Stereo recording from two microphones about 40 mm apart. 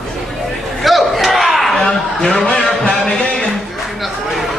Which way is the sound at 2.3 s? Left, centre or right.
Left.